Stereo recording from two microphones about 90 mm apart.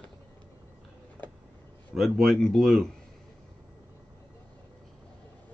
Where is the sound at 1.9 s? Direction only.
Centre (ahead or behind).